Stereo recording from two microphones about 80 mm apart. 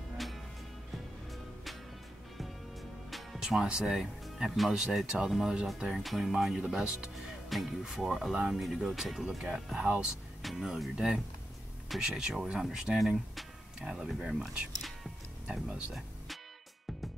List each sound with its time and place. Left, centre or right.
3.1 s speech: centre
9.8 s speech: centre
10.4 s speech: centre